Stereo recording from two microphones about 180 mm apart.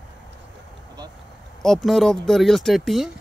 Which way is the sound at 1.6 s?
Centre (ahead or behind).